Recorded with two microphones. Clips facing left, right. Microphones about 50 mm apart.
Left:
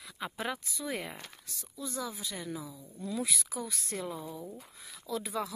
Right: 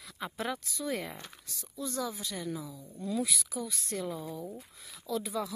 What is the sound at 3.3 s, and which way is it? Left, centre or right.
Speech, left.